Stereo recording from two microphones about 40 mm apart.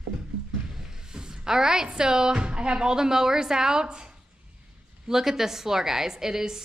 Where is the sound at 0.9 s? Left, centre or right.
Centre.